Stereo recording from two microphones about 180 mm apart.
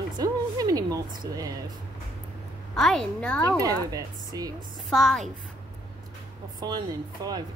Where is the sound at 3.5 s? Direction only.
20° right (ahead or behind).